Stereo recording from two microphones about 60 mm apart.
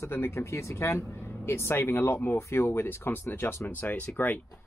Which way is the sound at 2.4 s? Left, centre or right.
Left.